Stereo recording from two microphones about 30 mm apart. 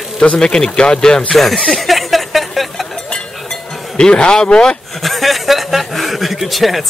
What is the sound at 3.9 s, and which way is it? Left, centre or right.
Speech, left.